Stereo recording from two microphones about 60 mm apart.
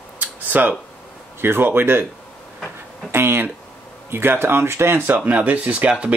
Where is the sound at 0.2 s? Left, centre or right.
Right.